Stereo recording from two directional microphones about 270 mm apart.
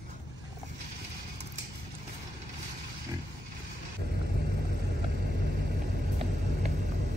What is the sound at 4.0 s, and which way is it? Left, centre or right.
Vehicle, right.